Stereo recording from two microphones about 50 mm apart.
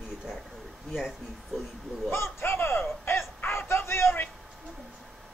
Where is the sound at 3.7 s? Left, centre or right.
Left.